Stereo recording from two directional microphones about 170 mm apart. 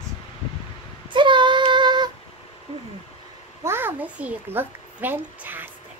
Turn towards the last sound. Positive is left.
turn(degrees=-10)  # may be behind; listen again after turning